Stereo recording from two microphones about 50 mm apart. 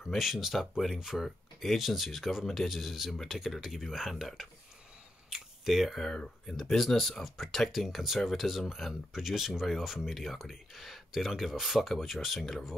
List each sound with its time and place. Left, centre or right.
0.0 s speech: centre
5.3 s a sound: centre
6.1 s speech: centre
6.5 s speech: centre